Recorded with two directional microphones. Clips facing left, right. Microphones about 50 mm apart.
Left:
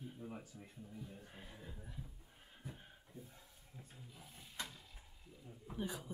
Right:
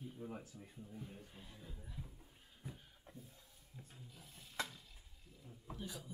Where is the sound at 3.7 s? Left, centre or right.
Left.